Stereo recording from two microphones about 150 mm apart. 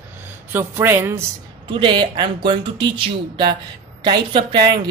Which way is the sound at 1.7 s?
30° right (ahead or behind).